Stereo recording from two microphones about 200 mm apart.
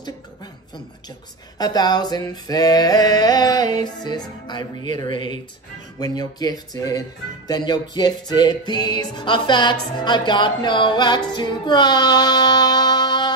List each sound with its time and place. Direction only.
1.6 s music: 20° left (ahead or behind)